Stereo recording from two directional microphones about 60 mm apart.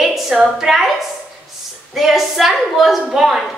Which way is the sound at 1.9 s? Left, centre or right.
Centre.